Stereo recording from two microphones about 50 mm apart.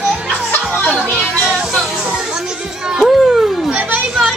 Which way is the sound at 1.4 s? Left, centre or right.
Centre.